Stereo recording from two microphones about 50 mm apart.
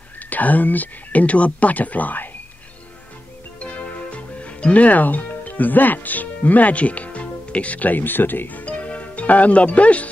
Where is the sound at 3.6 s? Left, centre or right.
Left.